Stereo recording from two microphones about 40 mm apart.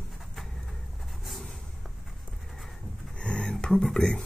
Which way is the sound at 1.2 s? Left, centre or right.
Centre.